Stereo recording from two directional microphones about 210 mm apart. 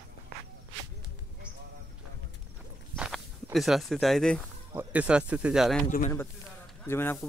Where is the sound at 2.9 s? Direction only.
5° right (ahead or behind).